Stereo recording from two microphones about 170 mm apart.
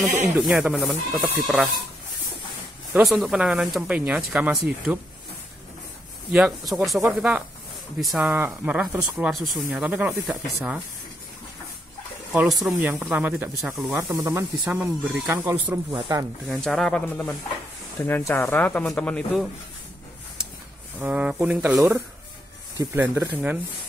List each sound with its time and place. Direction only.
0.4 s speech: 5° right (ahead or behind)
3.1 s speech: centre (ahead or behind)
6.3 s speech: centre (ahead or behind)
12.3 s speech: centre (ahead or behind)
14.0 s speech: 20° right (ahead or behind)
14.3 s speech: 10° right (ahead or behind)
16.4 s speech: centre (ahead or behind)
21.0 s speech: 5° right (ahead or behind)